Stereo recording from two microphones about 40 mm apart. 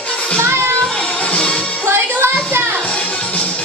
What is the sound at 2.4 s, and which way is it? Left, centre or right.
Children playing, right.